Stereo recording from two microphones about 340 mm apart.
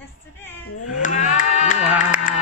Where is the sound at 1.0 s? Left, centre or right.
Left.